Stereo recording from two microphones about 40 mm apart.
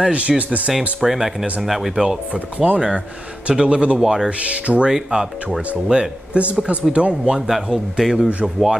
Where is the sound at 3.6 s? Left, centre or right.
Right.